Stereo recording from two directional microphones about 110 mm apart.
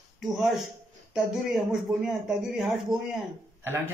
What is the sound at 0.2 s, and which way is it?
Speech, centre (ahead or behind).